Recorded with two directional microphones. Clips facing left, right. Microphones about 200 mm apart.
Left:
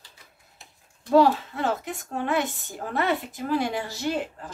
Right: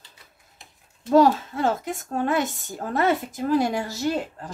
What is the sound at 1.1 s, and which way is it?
A woman's voice, 45° right (ahead or behind).